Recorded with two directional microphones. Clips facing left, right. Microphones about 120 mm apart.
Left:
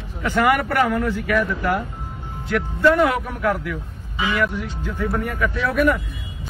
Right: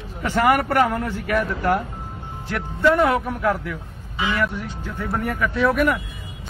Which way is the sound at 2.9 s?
35° right (ahead or behind).